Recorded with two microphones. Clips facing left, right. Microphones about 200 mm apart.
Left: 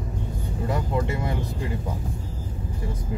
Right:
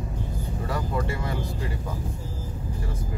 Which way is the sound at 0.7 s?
20° left (ahead or behind).